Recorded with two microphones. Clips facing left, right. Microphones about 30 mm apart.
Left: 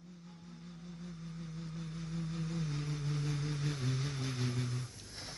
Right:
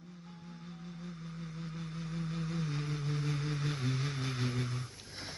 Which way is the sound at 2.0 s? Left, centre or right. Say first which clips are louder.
Right 2 dB; centre.